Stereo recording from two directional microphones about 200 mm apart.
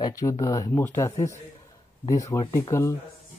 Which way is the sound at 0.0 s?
15° left (ahead or behind).